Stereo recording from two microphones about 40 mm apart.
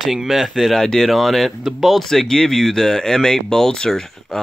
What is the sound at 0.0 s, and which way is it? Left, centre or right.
Speech, centre.